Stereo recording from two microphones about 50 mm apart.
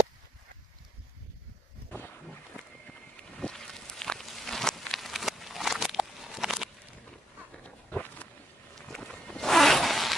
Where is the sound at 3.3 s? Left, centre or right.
Centre.